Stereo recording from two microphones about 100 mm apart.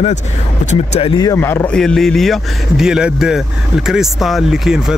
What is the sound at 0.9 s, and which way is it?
Speech, 70° left (ahead or behind).